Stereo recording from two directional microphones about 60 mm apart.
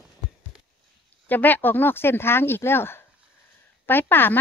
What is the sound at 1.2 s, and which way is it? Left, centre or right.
Speech, left.